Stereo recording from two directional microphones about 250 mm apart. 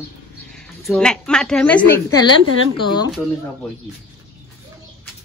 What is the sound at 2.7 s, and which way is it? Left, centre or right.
Speech, centre.